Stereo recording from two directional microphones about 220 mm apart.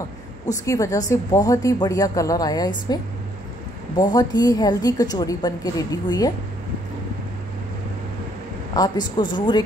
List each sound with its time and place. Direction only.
0.7 s a woman's voice: 15° left (ahead or behind)
3.9 s a woman's voice: 20° left (ahead or behind)
8.7 s a woman's voice: 20° left (ahead or behind)